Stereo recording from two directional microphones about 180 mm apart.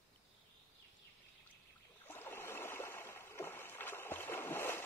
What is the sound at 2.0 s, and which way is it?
Stream, 10° left (ahead or behind).